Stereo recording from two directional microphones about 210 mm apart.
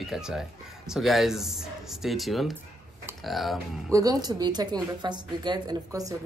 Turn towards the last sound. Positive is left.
turn(degrees=-20)  # may be behind; listen again after turning